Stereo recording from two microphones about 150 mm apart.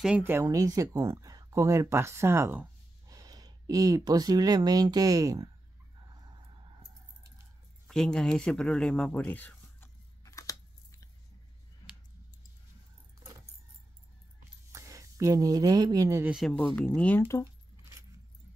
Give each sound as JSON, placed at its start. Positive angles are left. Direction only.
{"t": 0.0, "sound": "speech", "side_deg": -10}
{"t": 7.8, "sound": "speech", "side_deg": 5}
{"t": 10.2, "sound": "a sound", "side_deg": 20}
{"t": 14.7, "sound": "speech", "side_deg": -20}
{"t": 16.3, "sound": "speech", "side_deg": 0}